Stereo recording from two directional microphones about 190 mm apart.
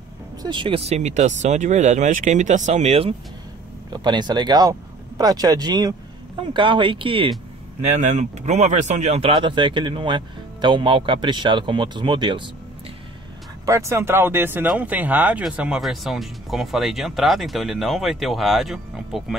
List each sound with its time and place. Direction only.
0.4 s speech: 25° right (ahead or behind)
7.8 s speech: 40° right (ahead or behind)
13.7 s speech: 15° right (ahead or behind)